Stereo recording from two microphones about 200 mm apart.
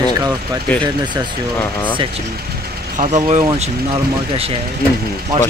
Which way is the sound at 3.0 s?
35° right (ahead or behind).